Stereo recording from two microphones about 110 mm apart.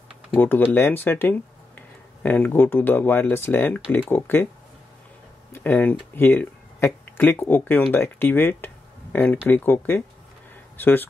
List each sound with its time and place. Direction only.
0.4 s speech: 20° left (ahead or behind)
5.5 s speech: 15° left (ahead or behind)
10.5 s a sound: 15° left (ahead or behind)